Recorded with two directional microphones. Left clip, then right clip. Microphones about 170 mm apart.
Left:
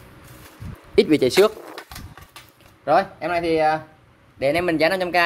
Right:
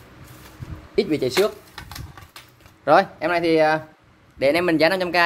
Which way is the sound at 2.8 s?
25° right (ahead or behind).